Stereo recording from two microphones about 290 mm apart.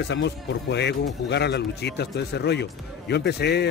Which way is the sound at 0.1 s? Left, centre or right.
Left.